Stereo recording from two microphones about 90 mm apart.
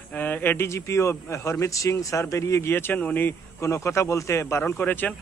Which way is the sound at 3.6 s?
30° left (ahead or behind).